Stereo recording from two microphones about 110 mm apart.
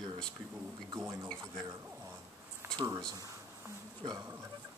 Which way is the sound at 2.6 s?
25° right (ahead or behind).